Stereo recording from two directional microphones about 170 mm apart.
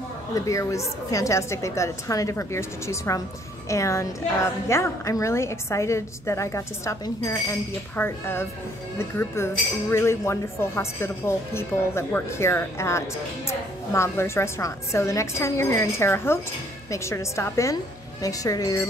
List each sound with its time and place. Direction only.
0.5 s a woman's voice: 20° left (ahead or behind)